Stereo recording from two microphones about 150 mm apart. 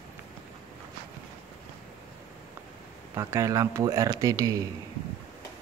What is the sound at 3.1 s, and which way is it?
Speech, 20° right (ahead or behind).